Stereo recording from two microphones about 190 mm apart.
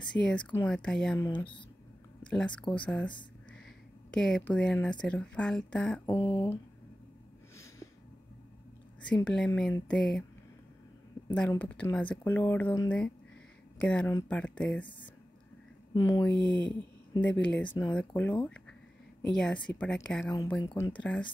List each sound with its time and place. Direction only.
0.1 s speech: 5° left (ahead or behind)
1.1 s speech: 15° left (ahead or behind)
4.1 s speech: 5° left (ahead or behind)
6.0 s speech: 25° left (ahead or behind)
9.1 s speech: 5° left (ahead or behind)
11.3 s speech: 5° left (ahead or behind)
15.9 s speech: 20° left (ahead or behind)
17.2 s speech: 5° left (ahead or behind)